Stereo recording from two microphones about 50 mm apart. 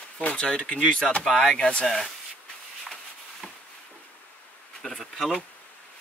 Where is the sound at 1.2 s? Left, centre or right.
Centre.